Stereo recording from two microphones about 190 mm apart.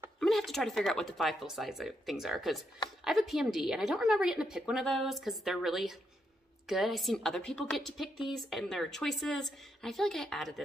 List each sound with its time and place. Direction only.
0.2 s a woman's voice: centre (ahead or behind)